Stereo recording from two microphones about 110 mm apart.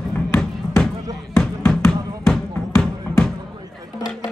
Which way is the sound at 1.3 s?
5° left (ahead or behind).